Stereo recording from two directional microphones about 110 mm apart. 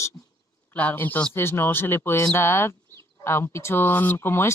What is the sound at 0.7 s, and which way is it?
Speech, 15° left (ahead or behind).